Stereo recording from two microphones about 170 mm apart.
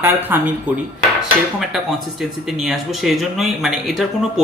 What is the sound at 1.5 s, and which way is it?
Speech, centre (ahead or behind).